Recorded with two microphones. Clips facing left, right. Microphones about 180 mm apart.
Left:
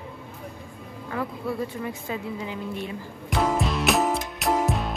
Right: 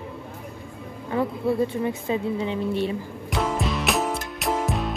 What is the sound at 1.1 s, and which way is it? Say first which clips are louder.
A woman's voice: right 6 dB; 25° right (ahead or behind).